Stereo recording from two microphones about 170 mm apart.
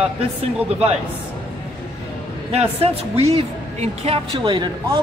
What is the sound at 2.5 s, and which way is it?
Speech, 35° right (ahead or behind).